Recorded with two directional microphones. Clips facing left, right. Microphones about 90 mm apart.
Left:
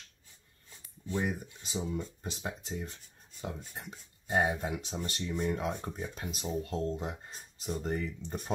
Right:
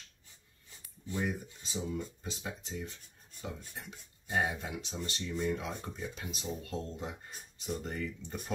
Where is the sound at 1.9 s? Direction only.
40° left (ahead or behind).